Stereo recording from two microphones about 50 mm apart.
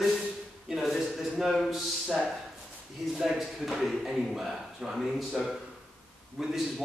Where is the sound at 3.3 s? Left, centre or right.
Centre.